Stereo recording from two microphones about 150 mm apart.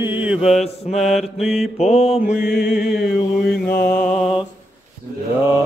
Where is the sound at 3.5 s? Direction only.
80° left.